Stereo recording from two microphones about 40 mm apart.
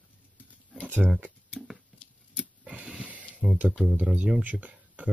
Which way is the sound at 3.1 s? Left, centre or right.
Right.